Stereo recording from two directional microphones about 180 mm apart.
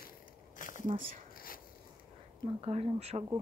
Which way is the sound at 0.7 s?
45° right (ahead or behind).